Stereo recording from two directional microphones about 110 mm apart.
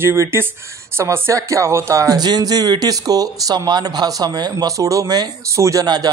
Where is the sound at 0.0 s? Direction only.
20° right (ahead or behind).